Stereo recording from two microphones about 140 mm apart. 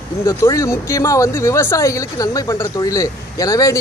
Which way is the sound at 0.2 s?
20° left (ahead or behind).